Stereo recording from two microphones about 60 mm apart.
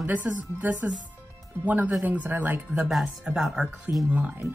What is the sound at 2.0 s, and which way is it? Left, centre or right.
Speech, right.